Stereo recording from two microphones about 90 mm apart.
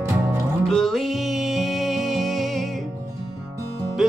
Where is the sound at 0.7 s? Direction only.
5° left (ahead or behind).